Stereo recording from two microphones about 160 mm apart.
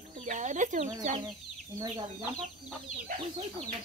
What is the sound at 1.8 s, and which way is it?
Speech, 25° right (ahead or behind).